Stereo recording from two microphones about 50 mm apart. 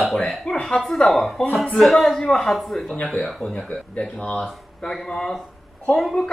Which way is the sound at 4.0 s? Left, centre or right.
Left.